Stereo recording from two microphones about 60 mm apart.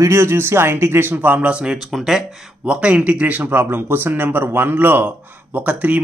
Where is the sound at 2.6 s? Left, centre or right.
Centre.